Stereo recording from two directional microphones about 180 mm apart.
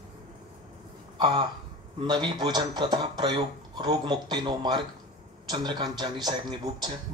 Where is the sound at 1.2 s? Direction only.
25° right (ahead or behind).